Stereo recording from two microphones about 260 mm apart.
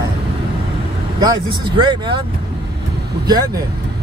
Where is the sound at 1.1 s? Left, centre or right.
Centre.